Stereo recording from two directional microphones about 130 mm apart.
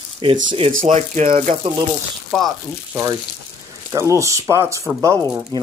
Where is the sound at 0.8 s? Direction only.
60° right (ahead or behind).